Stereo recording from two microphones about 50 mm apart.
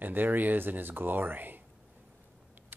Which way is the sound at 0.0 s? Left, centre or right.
Right.